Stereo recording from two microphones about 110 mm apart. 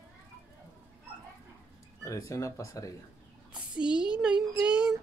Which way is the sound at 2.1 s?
30° left (ahead or behind).